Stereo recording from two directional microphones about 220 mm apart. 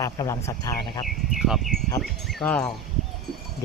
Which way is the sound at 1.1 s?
Centre (ahead or behind).